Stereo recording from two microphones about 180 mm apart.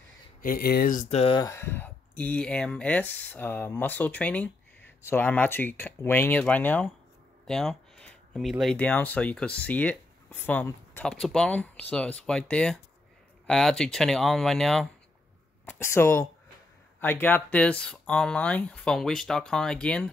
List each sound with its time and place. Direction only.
0.4 s speech: 55° left (ahead or behind)
1.1 s speech: 30° left (ahead or behind)
1.4 s speech: 15° left (ahead or behind)
15.6 s speech: 15° left (ahead or behind)